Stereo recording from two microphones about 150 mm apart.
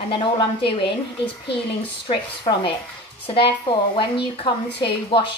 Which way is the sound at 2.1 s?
35° left (ahead or behind).